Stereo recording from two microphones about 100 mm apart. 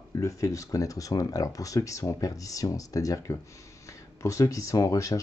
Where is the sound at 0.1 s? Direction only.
30° left (ahead or behind).